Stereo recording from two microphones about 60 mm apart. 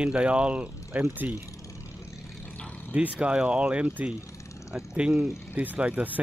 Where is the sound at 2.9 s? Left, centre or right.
Centre.